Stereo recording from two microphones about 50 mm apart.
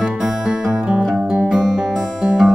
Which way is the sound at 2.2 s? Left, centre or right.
Right.